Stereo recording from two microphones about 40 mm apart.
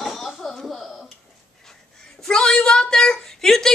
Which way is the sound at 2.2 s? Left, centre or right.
Centre.